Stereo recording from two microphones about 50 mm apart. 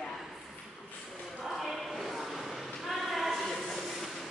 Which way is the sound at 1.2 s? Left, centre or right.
Centre.